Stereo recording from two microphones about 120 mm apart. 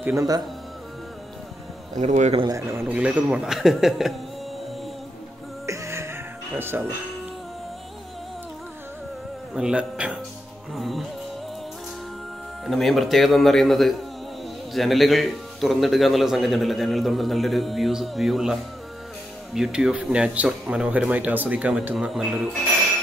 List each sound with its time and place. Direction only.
0.0 s a man's voice: 25° right (ahead or behind)
2.0 s a man's voice: 85° right
2.4 s a man's voice: 25° right (ahead or behind)
3.0 s a man's voice: 10° right (ahead or behind)
5.7 s music: 25° right (ahead or behind)
9.5 s a man's voice: 10° right (ahead or behind)
12.6 s a man's voice: centre (ahead or behind)